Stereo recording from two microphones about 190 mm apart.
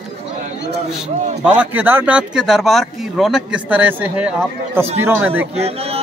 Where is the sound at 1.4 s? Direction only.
5° right (ahead or behind).